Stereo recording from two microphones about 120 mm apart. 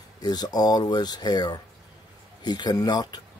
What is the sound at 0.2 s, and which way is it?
Speech, 35° left (ahead or behind).